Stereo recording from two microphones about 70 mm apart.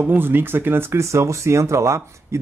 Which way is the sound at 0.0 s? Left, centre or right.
Right.